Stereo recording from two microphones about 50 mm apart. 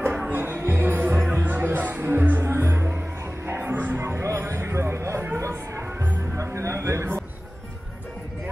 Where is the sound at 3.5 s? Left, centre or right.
Right.